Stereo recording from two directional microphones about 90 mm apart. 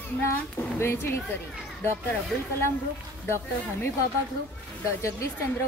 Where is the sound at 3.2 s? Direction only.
30° left (ahead or behind).